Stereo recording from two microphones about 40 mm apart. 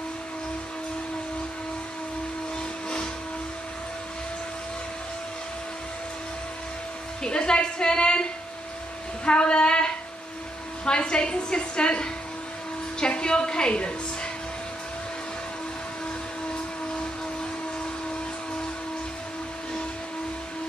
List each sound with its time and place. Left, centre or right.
7.2 s a woman's voice: left